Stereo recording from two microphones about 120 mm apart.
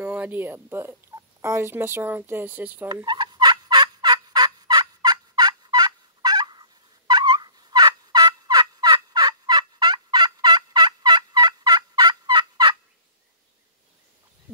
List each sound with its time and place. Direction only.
0.0 s speech: 15° right (ahead or behind)
3.1 s fowl: 40° right (ahead or behind)